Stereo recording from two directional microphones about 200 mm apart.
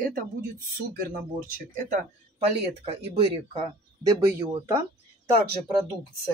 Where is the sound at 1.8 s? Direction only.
40° right (ahead or behind).